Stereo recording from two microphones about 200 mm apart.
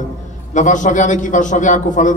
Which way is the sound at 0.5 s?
40° left (ahead or behind).